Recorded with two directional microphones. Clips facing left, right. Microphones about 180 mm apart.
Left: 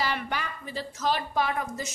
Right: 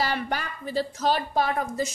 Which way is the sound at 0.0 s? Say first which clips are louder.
Right 3 dB; 40° right (ahead or behind).